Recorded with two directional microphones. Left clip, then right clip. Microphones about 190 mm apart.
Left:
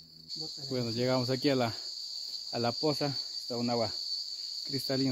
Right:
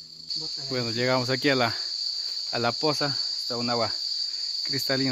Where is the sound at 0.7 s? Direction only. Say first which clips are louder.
Right 6 dB; 15° right (ahead or behind).